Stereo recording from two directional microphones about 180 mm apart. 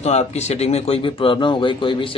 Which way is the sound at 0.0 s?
35° left (ahead or behind).